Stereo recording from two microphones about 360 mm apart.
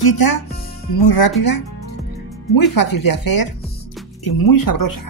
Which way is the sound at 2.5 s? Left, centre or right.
Left.